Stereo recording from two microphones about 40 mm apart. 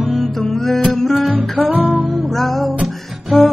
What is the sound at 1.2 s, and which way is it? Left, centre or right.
Music, right.